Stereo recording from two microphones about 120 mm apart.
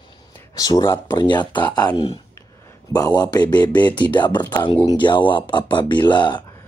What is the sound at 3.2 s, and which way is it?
Speech, 35° left (ahead or behind).